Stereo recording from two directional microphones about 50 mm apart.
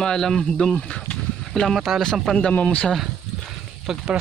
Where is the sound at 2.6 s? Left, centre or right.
Left.